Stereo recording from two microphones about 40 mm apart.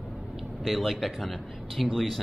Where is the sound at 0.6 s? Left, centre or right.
Centre.